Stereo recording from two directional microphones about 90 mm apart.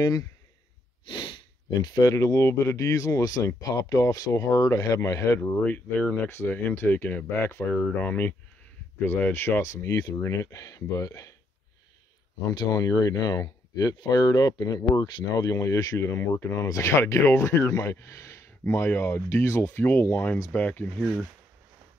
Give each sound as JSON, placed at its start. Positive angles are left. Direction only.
{"t": 0.0, "sound": "speech", "side_deg": 40}
{"t": 1.0, "sound": "sniff", "side_deg": 55}
{"t": 2.0, "sound": "speech", "side_deg": 35}
{"t": 5.4, "sound": "speech", "side_deg": 20}
{"t": 7.7, "sound": "speech", "side_deg": 15}
{"t": 12.5, "sound": "speech", "side_deg": 45}
{"t": 16.0, "sound": "speech", "side_deg": 30}
{"t": 21.0, "sound": "speech", "side_deg": 5}